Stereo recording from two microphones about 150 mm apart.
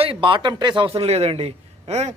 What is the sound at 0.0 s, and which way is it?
Speech, 35° right (ahead or behind).